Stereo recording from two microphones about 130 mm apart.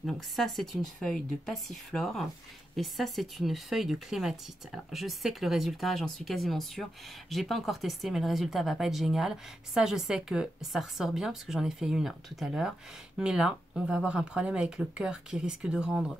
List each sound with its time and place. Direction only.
0.0 s speech: centre (ahead or behind)